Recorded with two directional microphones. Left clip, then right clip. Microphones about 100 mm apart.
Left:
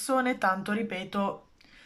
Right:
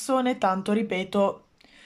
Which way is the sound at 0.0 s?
30° right (ahead or behind).